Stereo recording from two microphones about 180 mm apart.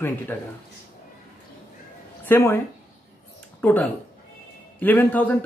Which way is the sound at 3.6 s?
10° left (ahead or behind).